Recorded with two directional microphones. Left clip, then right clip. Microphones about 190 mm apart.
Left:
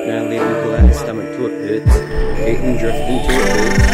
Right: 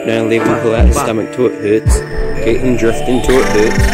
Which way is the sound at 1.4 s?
20° right (ahead or behind).